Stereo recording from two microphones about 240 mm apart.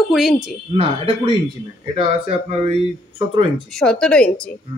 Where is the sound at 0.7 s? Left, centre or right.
Right.